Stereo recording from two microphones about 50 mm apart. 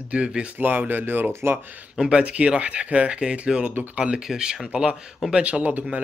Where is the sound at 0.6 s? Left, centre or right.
Right.